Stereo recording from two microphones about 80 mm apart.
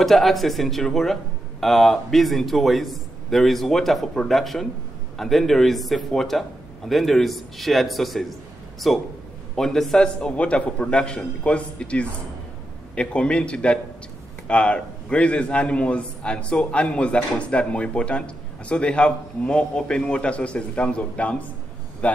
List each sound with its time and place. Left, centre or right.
0.0 s a man's voice: centre
10.3 s a man's voice: centre